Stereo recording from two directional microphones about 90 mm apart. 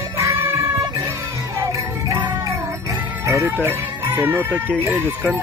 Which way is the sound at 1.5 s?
35° right (ahead or behind).